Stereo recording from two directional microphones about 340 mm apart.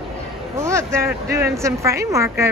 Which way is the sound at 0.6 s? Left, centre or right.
Centre.